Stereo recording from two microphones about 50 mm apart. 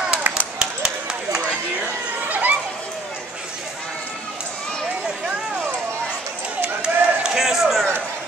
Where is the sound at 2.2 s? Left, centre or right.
Right.